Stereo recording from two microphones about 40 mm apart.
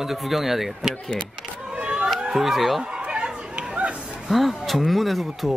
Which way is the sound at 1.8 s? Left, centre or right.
Right.